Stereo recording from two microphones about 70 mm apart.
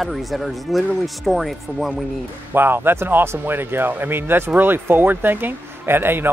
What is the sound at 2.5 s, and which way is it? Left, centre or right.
Speech, right.